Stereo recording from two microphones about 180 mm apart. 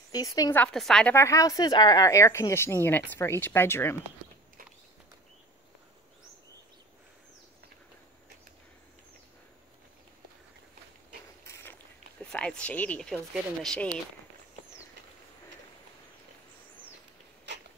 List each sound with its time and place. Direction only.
0.1 s a woman's voice: 20° left (ahead or behind)
0.6 s speech: 5° left (ahead or behind)
1.1 s speech: 15° left (ahead or behind)
11.4 s a sound: 15° left (ahead or behind)
12.2 s speech: 5° left (ahead or behind)